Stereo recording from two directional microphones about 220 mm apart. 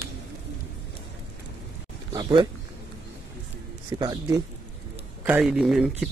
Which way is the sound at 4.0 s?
20° right (ahead or behind).